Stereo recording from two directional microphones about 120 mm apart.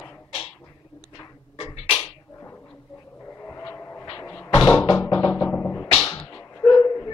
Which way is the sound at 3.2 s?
25° left (ahead or behind).